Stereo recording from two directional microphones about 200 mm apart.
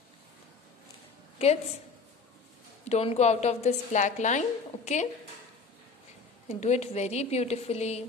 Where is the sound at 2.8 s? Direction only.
30° left (ahead or behind).